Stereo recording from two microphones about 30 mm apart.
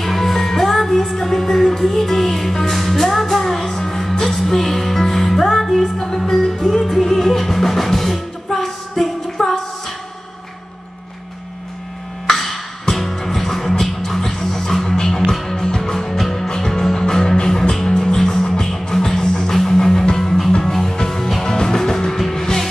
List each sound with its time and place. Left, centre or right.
0.0 s music: centre
12.3 s music: centre
21.5 s music: centre